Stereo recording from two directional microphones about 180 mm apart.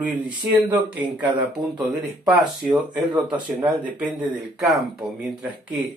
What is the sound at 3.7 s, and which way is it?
Speech, 5° right (ahead or behind).